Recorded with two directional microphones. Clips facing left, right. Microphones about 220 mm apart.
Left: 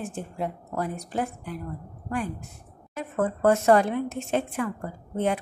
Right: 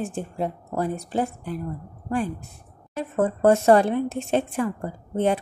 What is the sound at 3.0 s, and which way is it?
A woman's voice, 30° right (ahead or behind).